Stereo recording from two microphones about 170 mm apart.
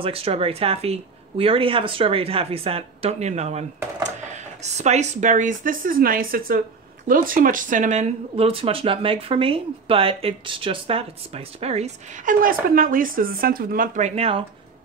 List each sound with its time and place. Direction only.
0.0 s speech: 35° right (ahead or behind)
12.4 s speech: 55° right (ahead or behind); by 14.4 s 35° right (ahead or behind)